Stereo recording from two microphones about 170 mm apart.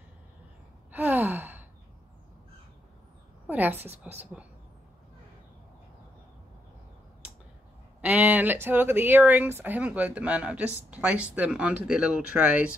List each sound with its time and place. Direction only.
0.9 s gasp: 10° right (ahead or behind)
3.4 s speech: 10° right (ahead or behind)
8.0 s speech: 10° right (ahead or behind)